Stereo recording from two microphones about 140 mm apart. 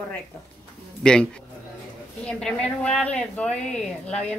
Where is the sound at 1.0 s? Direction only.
5° left (ahead or behind).